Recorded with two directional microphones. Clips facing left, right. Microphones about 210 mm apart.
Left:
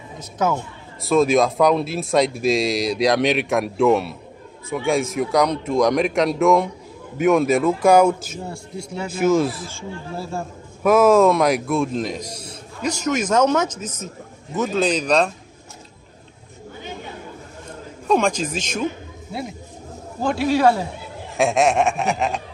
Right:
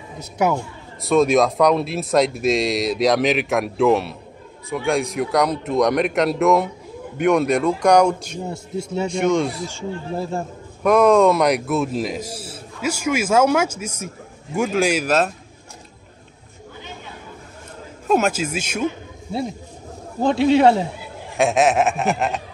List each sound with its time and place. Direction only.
0.2 s a man's voice: 15° right (ahead or behind)
1.0 s speech: centre (ahead or behind)
8.5 s speech: 25° right (ahead or behind)
9.1 s speech: 5° left (ahead or behind)
9.7 s a man's voice: 15° right (ahead or behind)
10.8 s a man's voice: 5° left (ahead or behind)
18.0 s a man's voice: 5° right (ahead or behind)
20.2 s speech: 25° right (ahead or behind)
21.4 s speech: centre (ahead or behind)